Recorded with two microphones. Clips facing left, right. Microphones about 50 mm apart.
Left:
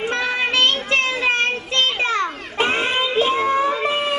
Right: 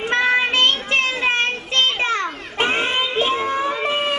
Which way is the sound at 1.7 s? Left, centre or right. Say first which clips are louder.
Right 1 dB; right.